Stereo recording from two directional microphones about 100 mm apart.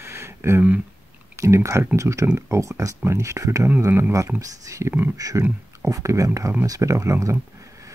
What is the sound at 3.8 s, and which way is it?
Speech, 20° right (ahead or behind).